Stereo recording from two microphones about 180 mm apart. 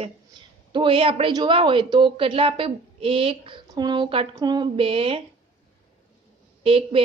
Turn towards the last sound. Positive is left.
turn(degrees=-30)  # may be behind; listen again after turning